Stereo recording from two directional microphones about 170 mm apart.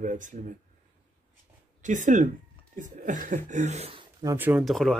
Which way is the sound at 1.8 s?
45° right (ahead or behind).